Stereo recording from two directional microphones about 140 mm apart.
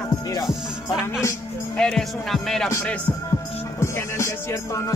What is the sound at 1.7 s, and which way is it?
Speech, 5° left (ahead or behind).